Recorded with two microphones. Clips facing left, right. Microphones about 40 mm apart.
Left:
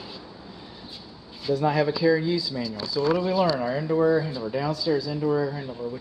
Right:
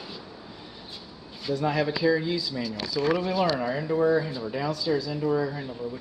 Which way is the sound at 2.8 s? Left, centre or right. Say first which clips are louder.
Left 2 dB; right.